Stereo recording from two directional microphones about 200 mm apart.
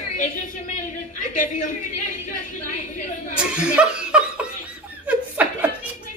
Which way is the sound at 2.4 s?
40° left (ahead or behind).